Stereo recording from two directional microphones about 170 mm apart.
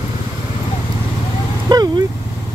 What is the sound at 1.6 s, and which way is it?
Vehicle, 25° right (ahead or behind).